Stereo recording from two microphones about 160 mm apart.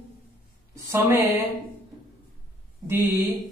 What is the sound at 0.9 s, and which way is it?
Speech, 10° right (ahead or behind).